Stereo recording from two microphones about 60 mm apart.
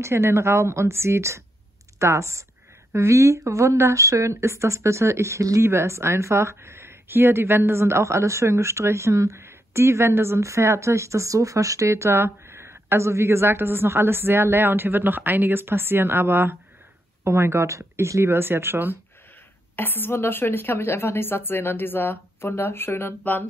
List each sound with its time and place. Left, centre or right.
0.0 s speech: right
10.4 s speech: right
19.7 s speech: left